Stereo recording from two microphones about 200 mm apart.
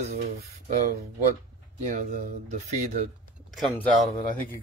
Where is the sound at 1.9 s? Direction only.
40° right (ahead or behind).